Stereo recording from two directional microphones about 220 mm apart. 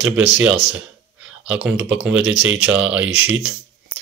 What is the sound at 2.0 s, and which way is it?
Speech, 5° right (ahead or behind).